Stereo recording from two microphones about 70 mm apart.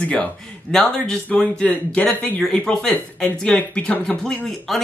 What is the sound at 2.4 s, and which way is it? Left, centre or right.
Speech, centre.